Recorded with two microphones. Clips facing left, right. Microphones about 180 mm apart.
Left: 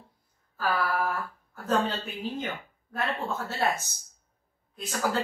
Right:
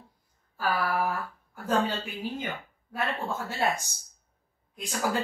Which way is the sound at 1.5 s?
10° right (ahead or behind).